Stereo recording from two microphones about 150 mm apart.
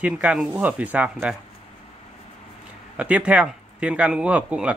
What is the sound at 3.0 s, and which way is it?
Speech, 10° right (ahead or behind).